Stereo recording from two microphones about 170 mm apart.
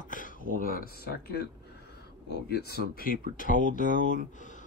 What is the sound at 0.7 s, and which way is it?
Speech, 60° left (ahead or behind).